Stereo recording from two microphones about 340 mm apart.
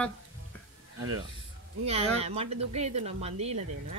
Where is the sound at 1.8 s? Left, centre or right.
Centre.